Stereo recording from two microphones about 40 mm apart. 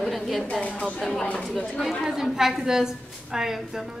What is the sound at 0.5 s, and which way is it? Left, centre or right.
Speech, left.